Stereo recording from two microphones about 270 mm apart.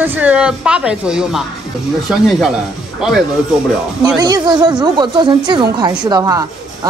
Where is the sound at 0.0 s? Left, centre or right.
Centre.